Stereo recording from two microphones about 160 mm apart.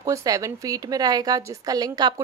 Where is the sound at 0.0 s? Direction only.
20° right (ahead or behind).